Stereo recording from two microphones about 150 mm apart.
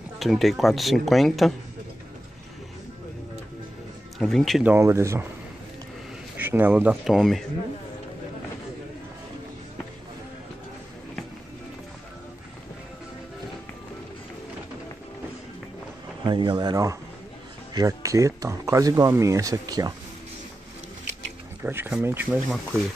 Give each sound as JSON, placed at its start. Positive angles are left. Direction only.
{"t": 0.2, "sound": "speech", "side_deg": 0}
{"t": 4.2, "sound": "speech", "side_deg": 0}
{"t": 4.6, "sound": "speech", "side_deg": -20}
{"t": 6.3, "sound": "speech", "side_deg": -10}
{"t": 7.1, "sound": "speech", "side_deg": 0}
{"t": 16.3, "sound": "speech", "side_deg": -35}
{"t": 21.6, "sound": "speech", "side_deg": -15}